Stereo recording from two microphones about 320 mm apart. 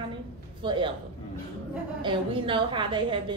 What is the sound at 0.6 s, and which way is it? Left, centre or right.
Speech, centre.